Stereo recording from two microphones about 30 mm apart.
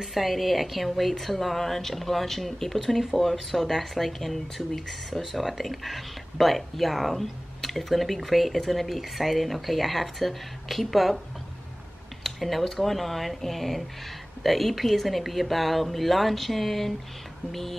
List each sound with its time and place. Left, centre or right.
0.0 s speech: centre
12.2 s speech: centre